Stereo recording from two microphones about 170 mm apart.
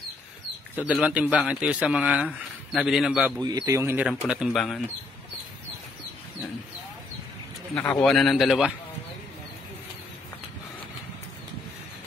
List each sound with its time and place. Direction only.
0.7 s speech: 5° right (ahead or behind)
3.3 s a man's voice: 25° right (ahead or behind); by 4.8 s centre (ahead or behind)
7.7 s speech: 5° left (ahead or behind)